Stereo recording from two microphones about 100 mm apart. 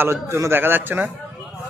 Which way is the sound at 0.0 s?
25° right (ahead or behind).